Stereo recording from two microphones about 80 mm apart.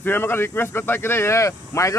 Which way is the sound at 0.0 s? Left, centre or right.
Left.